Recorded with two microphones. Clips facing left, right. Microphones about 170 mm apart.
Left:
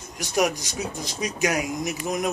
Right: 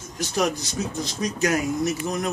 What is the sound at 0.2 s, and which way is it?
Speech, 15° left (ahead or behind).